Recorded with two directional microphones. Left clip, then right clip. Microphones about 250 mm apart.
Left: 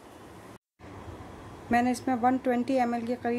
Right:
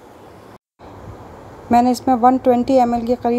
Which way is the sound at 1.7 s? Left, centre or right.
Centre.